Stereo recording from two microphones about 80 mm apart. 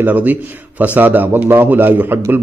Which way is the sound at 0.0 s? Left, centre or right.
Right.